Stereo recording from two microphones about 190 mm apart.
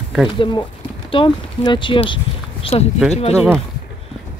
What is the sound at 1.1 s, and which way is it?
Speech, 25° left (ahead or behind).